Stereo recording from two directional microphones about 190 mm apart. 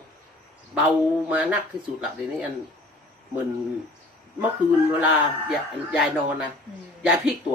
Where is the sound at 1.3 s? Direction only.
10° right (ahead or behind).